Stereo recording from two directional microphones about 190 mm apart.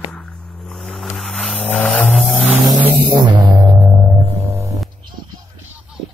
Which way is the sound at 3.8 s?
10° right (ahead or behind).